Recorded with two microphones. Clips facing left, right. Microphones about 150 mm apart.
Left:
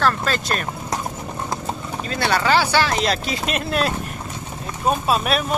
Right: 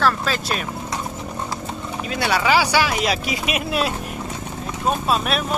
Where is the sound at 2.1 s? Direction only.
10° right (ahead or behind).